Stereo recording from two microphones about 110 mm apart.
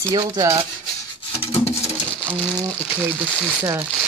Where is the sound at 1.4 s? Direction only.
60° left (ahead or behind).